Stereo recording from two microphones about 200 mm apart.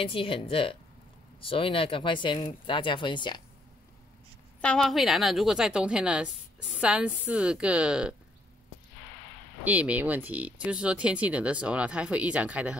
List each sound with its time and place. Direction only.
0.0 s speech: 25° left (ahead or behind)
4.6 s a woman's voice: 5° left (ahead or behind)
9.7 s speech: 5° right (ahead or behind)